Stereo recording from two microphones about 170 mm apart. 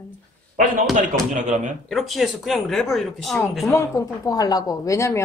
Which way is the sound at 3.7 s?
15° left (ahead or behind).